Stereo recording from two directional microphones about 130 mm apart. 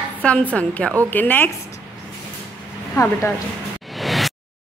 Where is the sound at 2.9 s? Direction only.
15° left (ahead or behind).